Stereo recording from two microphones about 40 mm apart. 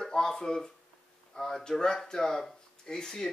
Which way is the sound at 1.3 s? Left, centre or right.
Centre.